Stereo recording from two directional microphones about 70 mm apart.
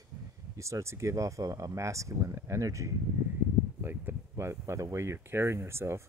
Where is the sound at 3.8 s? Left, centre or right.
Right.